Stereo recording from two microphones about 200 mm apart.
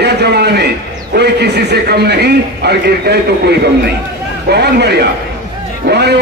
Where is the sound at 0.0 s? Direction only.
55° right (ahead or behind).